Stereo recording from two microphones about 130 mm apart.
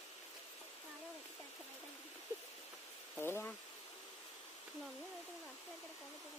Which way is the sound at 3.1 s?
15° left (ahead or behind).